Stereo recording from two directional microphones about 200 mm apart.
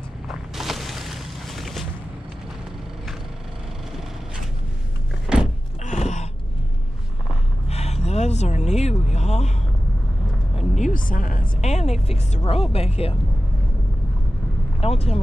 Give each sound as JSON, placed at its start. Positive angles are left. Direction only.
{"t": 0.3, "sound": "a sound", "side_deg": 0}
{"t": 5.2, "sound": "a sound", "side_deg": -5}
{"t": 5.9, "sound": "gasp", "side_deg": 35}
{"t": 7.6, "sound": "gasp", "side_deg": 30}
{"t": 9.1, "sound": "speech", "side_deg": 35}
{"t": 10.8, "sound": "a woman's voice", "side_deg": 40}
{"t": 14.8, "sound": "a woman's voice", "side_deg": 30}